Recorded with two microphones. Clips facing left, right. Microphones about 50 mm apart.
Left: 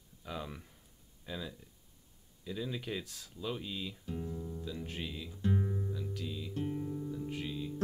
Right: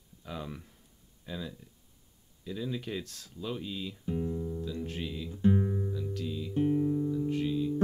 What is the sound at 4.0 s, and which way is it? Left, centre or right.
Music, centre.